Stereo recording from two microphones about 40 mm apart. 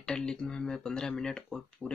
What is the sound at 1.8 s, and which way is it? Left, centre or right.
Speech, left.